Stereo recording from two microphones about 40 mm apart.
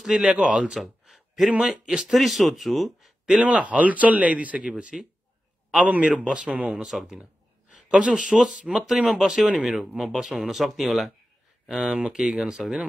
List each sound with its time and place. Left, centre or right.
0.1 s speech: right
1.0 s a sound: centre
1.6 s speech: centre
2.1 s speech: centre
3.3 s speech: right
5.9 s speech: right
6.5 s speech: right
6.8 s speech: centre
11.8 s speech: right